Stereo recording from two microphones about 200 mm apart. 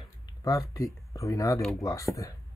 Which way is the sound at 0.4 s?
15° left (ahead or behind).